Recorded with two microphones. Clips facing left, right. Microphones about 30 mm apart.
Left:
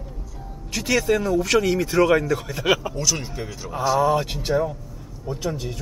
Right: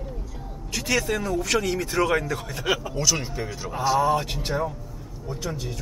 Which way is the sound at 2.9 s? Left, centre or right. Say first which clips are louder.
Even; centre.